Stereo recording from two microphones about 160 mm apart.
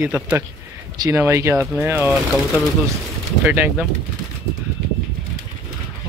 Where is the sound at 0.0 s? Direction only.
10° right (ahead or behind).